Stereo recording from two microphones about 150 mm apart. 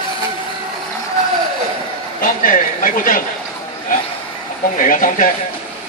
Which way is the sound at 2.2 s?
65° left (ahead or behind).